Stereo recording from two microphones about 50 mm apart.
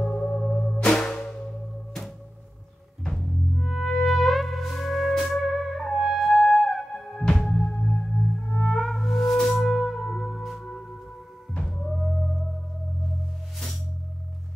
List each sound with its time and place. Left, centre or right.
0.0 s music: centre
0.7 s music: centre
3.1 s music: centre